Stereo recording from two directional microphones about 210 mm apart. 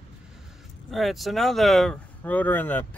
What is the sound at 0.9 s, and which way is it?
Speech, centre (ahead or behind).